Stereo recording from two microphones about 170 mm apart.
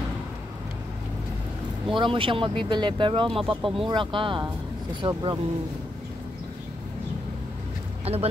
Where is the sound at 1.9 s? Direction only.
30° right (ahead or behind).